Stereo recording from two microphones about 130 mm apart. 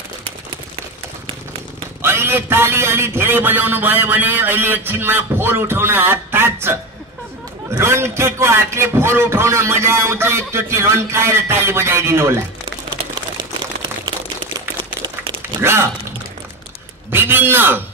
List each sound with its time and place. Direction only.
2.0 s a man's voice: 20° right (ahead or behind)
15.6 s a man's voice: 20° right (ahead or behind)
17.1 s a man's voice: 15° right (ahead or behind)